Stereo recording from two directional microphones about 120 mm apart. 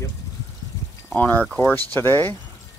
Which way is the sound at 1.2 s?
15° left (ahead or behind).